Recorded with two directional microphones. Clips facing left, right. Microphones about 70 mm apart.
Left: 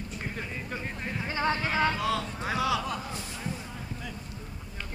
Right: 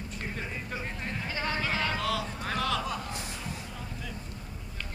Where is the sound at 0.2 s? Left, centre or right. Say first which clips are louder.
Right 1 dB; centre.